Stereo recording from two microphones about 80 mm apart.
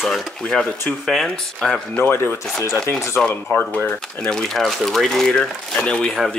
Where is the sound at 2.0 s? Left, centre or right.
Left.